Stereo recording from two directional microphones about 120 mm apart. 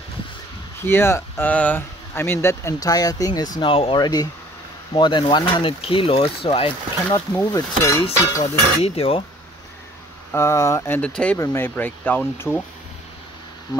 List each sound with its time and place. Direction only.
0.8 s speech: 20° left (ahead or behind); by 3.7 s 35° left (ahead or behind)
3.7 s speech: 50° left (ahead or behind)
4.0 s speech: 30° left (ahead or behind)
7.5 s speech: 25° left (ahead or behind)
8.4 s speech: 55° left (ahead or behind)
10.3 s speech: 25° left (ahead or behind)
11.0 s speech: 10° left (ahead or behind)
11.3 s speech: 20° left (ahead or behind)